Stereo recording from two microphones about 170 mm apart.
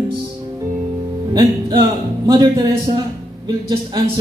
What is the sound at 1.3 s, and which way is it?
A man's voice, 20° right (ahead or behind).